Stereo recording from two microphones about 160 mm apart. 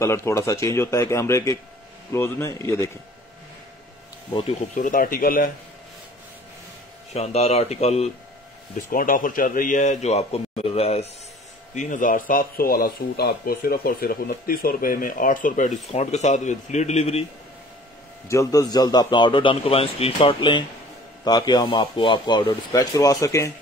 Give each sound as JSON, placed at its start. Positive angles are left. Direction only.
{"t": 0.0, "sound": "a man's voice", "side_deg": 15}
{"t": 4.3, "sound": "speech", "side_deg": 30}
{"t": 4.6, "sound": "speech", "side_deg": 55}
{"t": 7.2, "sound": "speech", "side_deg": 40}
{"t": 8.9, "sound": "a man's voice", "side_deg": 60}
{"t": 11.7, "sound": "speech", "side_deg": 50}
{"t": 18.3, "sound": "speech", "side_deg": 20}